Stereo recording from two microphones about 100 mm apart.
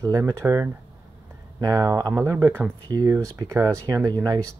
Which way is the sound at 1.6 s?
40° right (ahead or behind).